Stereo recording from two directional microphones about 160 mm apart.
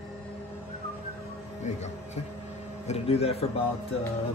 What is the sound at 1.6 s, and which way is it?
Speech, 45° left (ahead or behind).